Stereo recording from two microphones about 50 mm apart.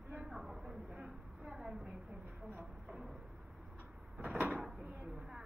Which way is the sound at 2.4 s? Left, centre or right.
Right.